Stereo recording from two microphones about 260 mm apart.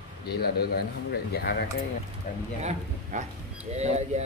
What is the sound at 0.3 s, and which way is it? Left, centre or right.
A man's voice, left.